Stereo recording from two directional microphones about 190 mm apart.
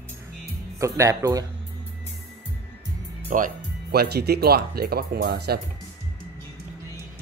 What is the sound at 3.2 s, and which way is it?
Speech, 45° right (ahead or behind).